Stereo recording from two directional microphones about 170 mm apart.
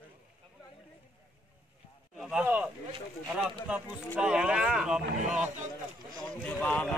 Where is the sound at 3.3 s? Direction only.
5° right (ahead or behind).